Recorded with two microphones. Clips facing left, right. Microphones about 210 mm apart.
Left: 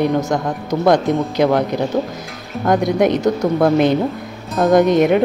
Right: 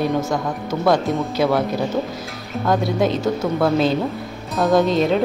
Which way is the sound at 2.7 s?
15° left (ahead or behind).